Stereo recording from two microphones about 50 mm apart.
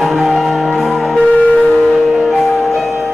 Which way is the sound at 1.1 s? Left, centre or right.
Left.